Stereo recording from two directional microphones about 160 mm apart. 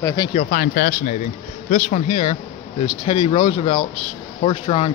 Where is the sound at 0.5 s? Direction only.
80° left.